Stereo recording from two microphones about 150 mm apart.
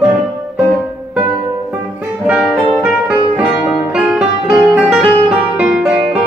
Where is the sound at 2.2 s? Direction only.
5° right (ahead or behind).